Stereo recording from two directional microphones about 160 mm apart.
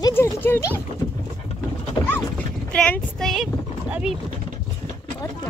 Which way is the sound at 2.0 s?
25° left (ahead or behind).